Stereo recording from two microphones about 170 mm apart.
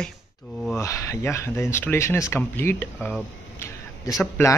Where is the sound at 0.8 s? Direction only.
20° left (ahead or behind).